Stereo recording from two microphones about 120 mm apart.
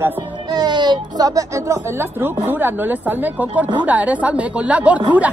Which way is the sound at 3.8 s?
10° right (ahead or behind).